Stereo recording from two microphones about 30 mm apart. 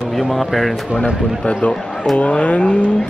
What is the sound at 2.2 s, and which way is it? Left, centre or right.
Speech, left.